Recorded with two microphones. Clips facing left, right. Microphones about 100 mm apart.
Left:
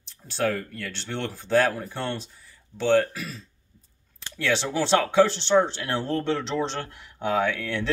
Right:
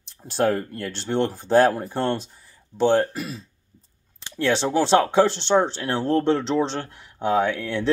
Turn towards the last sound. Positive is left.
turn(degrees=-25)  # may be behind; listen again after turning